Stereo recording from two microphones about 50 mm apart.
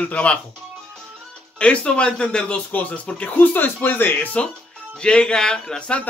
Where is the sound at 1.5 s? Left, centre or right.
Left.